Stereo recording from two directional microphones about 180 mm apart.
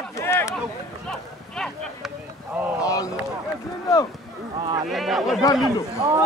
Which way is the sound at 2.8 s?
20° left (ahead or behind).